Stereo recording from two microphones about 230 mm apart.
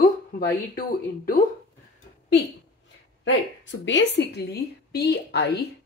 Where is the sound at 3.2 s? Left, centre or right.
Left.